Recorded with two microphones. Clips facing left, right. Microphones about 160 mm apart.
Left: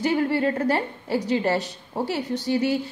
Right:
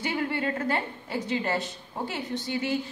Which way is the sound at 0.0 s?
40° left (ahead or behind).